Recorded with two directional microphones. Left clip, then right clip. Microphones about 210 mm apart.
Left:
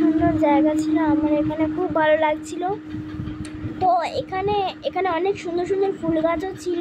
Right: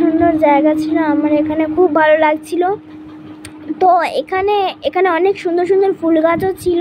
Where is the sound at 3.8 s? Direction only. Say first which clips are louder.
Right 8 dB; 30° right (ahead or behind).